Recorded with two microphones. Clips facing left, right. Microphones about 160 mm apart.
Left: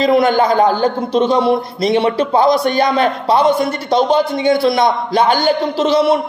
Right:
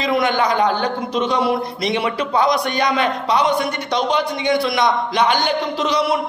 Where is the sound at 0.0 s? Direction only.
35° left (ahead or behind).